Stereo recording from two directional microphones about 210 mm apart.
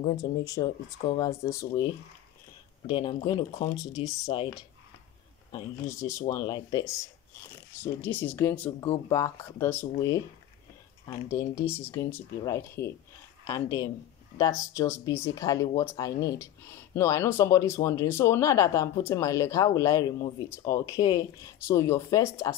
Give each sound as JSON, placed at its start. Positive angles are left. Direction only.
{"t": 0.5, "sound": "speech", "side_deg": 15}
{"t": 2.9, "sound": "speech", "side_deg": 25}
{"t": 7.8, "sound": "speech", "side_deg": 10}